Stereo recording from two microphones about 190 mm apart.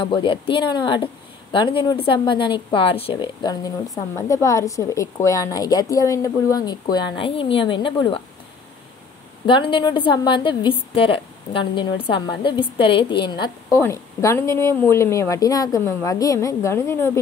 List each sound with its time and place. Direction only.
0.0 s a woman's voice: 25° left (ahead or behind)
9.5 s a woman's voice: 25° left (ahead or behind)